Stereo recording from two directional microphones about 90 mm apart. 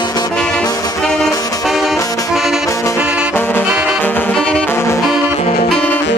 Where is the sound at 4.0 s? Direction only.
20° left (ahead or behind).